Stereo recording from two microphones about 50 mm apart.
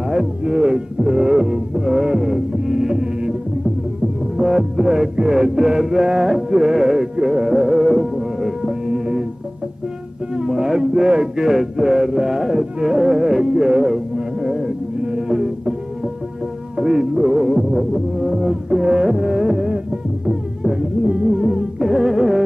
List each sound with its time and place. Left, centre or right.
0.1 s music: centre
4.4 s music: centre
10.3 s music: centre
16.7 s music: centre